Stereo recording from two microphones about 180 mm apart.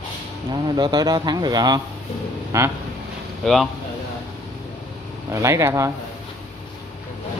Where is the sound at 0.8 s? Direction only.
20° right (ahead or behind).